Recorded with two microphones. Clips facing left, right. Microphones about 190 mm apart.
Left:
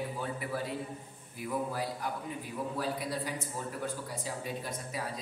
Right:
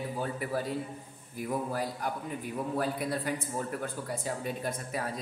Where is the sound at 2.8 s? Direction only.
55° right (ahead or behind).